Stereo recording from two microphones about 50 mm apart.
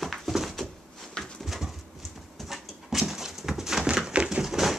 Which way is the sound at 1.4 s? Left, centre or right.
Centre.